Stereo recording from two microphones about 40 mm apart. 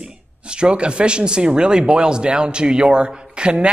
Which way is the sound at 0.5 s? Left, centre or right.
Right.